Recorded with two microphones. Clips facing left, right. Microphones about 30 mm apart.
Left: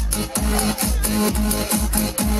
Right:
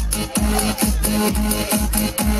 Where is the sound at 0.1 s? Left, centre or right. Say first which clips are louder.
Right 2 dB; centre.